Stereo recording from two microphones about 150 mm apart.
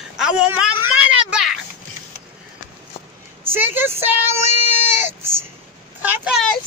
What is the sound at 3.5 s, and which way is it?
Speech, 15° right (ahead or behind).